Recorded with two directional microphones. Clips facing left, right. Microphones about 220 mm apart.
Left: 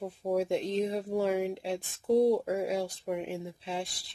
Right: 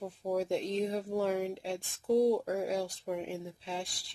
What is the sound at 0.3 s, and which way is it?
Speech, centre (ahead or behind).